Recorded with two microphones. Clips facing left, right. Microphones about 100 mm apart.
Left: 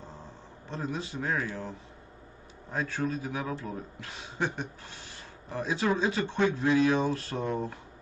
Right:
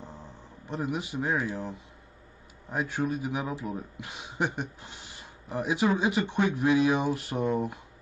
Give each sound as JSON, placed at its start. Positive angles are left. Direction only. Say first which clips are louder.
{"t": 0.0, "sound": "speech", "louder": "right 1 dB", "side_deg": -15}